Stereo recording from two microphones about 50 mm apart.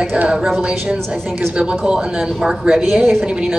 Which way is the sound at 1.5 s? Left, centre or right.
Centre.